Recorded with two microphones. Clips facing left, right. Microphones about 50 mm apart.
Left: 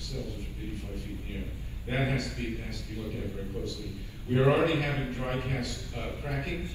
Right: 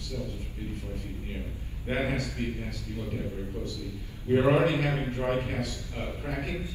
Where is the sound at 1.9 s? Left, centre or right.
Right.